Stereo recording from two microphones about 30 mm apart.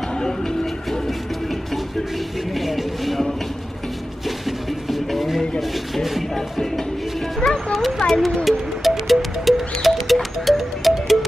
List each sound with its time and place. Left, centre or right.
0.2 s music: left
2.5 s a sound: centre
4.5 s music: centre
7.3 s music: centre
8.1 s a sound: centre
8.5 s music: centre